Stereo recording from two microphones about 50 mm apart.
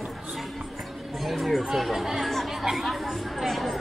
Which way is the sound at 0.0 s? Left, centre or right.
Centre.